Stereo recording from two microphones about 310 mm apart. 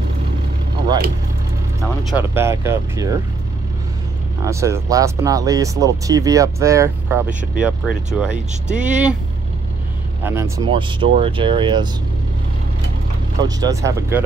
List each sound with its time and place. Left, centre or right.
2.0 s speech: centre
4.5 s speech: centre
10.2 s speech: centre
13.4 s speech: centre